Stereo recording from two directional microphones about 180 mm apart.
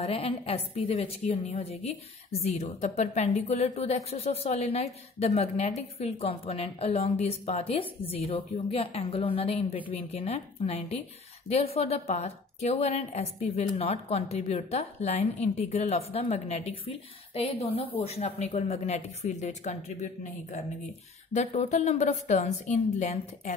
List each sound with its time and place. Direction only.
0.0 s a woman's voice: 35° left (ahead or behind)